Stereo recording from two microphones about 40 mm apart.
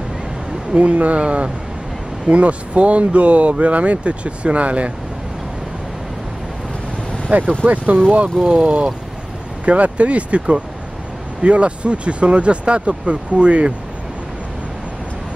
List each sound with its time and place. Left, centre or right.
0.7 s speech: right
7.2 s speech: right
11.4 s speech: right